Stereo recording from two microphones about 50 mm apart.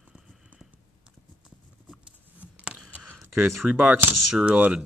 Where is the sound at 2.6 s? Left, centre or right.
Right.